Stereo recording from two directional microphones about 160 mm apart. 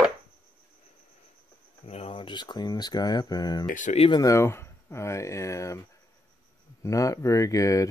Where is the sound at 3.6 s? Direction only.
55° left (ahead or behind).